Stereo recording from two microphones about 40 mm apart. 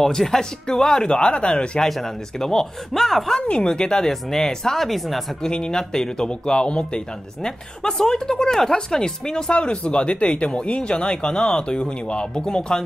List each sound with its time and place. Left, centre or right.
0.0 s speech: centre
1.8 s speech: centre
3.3 s speech: left; by 5.2 s centre
5.4 s speech: centre
9.5 s speech: left